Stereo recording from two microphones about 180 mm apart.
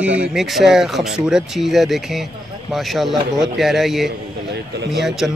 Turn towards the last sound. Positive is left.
turn(degrees=0)  # may be behind; listen again after turning